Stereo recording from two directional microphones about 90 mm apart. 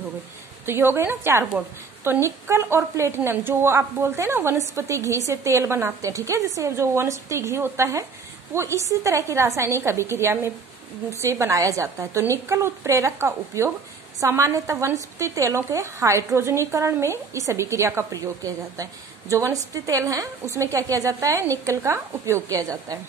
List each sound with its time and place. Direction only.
0.7 s a woman's voice: 25° right (ahead or behind)